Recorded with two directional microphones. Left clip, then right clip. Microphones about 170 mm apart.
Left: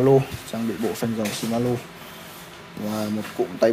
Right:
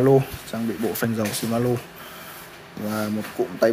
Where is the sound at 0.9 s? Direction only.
25° right (ahead or behind).